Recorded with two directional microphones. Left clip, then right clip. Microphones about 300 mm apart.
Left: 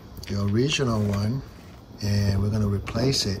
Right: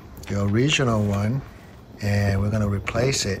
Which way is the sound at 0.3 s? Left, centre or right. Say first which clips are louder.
Right 3 dB; centre.